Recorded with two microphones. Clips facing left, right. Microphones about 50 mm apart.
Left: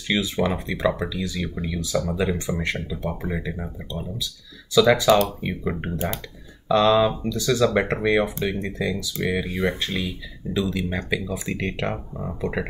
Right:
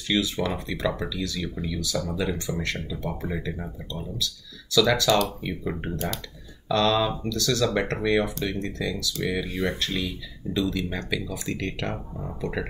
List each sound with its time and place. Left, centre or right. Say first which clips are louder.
0.1 s speech: left 2 dB; left